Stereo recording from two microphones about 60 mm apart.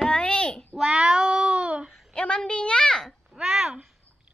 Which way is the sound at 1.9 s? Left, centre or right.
Centre.